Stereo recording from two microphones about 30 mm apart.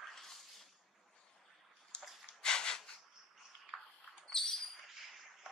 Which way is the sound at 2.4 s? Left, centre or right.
Left.